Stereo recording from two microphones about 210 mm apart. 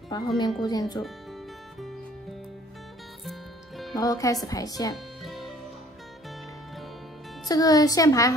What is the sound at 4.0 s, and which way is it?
Speech, 15° left (ahead or behind).